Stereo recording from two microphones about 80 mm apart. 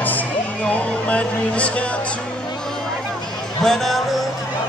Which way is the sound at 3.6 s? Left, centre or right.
Centre.